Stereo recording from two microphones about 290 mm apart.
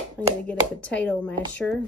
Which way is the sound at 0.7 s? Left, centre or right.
Centre.